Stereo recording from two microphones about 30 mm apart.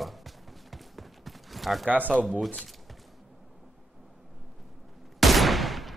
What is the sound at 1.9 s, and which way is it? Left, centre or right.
Speech, right.